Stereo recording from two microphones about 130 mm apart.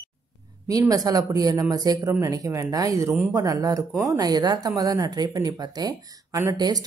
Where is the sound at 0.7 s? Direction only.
25° right (ahead or behind).